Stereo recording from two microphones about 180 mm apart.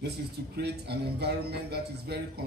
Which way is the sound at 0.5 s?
65° right (ahead or behind).